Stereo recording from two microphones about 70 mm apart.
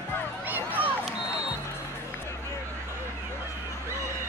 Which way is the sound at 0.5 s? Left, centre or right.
Right.